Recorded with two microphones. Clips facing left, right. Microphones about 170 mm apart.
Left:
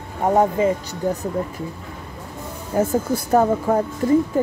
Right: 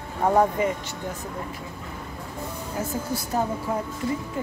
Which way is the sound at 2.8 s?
55° left (ahead or behind).